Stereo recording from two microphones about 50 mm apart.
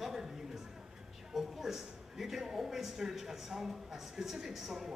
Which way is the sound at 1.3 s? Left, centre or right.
Centre.